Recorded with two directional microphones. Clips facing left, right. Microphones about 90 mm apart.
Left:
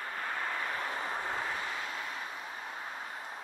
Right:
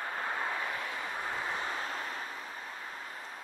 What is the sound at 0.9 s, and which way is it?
Vehicle, 35° left (ahead or behind).